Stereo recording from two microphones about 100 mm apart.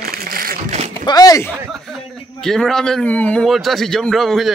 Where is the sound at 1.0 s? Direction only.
40° left (ahead or behind).